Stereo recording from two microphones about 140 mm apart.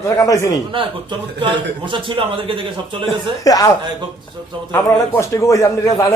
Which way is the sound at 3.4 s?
25° left (ahead or behind).